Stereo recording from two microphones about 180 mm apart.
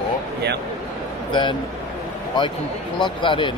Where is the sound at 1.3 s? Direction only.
25° left (ahead or behind).